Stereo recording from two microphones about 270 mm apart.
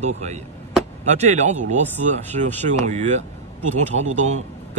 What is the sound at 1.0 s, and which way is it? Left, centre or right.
A man's voice, right.